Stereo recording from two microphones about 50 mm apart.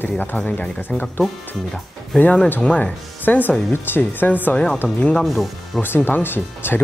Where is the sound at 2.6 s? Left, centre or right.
Left.